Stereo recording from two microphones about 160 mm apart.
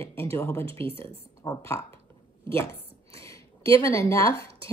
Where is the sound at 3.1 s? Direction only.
20° left (ahead or behind).